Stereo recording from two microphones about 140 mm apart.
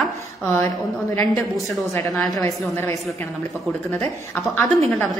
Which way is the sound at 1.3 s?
Centre (ahead or behind).